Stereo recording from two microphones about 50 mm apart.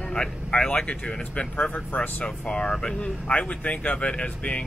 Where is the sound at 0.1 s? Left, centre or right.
Centre.